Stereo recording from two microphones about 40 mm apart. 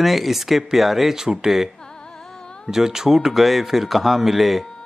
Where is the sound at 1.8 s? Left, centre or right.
Centre.